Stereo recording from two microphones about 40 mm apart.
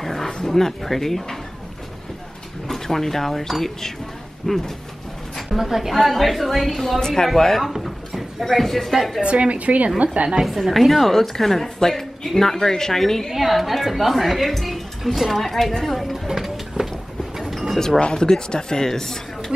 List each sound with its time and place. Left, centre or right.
0.0 s a sound: centre
0.5 s a woman's voice: centre
2.7 s a woman's voice: centre
5.3 s a woman's voice: centre
7.0 s a woman's voice: centre
7.7 s a sound: centre
8.9 s a woman's voice: centre
9.2 s a woman's voice: right
10.1 s a woman's voice: right
10.4 s a woman's voice: centre
13.3 s a woman's voice: centre
15.8 s a sound: centre
17.7 s a woman's voice: centre